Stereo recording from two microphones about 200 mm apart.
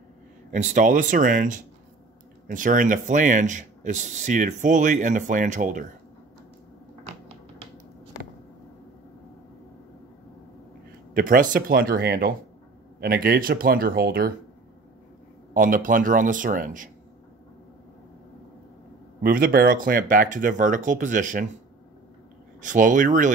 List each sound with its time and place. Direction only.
0.5 s speech: 35° right (ahead or behind)
11.1 s speech: 45° right (ahead or behind)
15.5 s speech: 40° right (ahead or behind)
19.2 s speech: 45° right (ahead or behind)
22.6 s speech: 40° right (ahead or behind)